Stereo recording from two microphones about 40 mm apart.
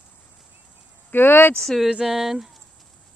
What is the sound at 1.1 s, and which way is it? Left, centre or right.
Speech, left.